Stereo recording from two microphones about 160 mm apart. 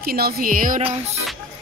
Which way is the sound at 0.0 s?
70° right (ahead or behind).